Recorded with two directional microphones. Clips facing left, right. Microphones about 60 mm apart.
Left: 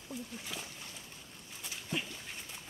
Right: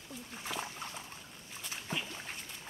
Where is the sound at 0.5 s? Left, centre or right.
Right.